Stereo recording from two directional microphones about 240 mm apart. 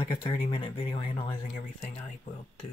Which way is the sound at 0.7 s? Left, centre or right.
Left.